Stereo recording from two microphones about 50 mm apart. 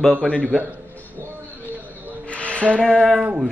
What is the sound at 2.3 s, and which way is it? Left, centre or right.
Music, left.